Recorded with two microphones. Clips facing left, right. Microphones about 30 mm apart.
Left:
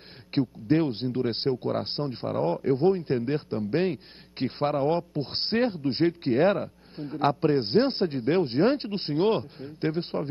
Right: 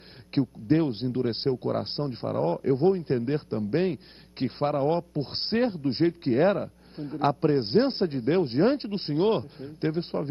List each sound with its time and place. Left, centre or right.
0.3 s a man's voice: left